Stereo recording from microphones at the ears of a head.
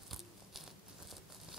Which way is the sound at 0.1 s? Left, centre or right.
Centre.